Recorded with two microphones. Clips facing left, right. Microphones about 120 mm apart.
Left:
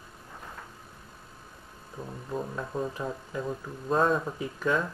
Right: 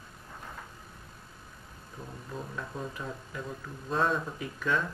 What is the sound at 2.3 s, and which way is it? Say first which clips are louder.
Speech: left 6 dB; 30° left (ahead or behind).